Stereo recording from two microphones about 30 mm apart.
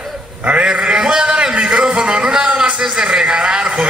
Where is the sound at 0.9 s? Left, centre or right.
Right.